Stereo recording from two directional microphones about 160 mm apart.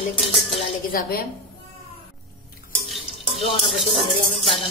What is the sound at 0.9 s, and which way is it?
Speech, 65° left (ahead or behind).